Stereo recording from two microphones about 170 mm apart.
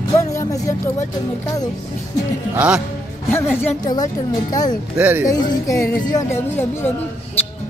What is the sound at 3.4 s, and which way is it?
Speech, 15° left (ahead or behind).